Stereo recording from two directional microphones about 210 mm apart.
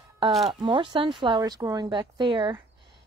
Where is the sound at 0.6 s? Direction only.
25° right (ahead or behind).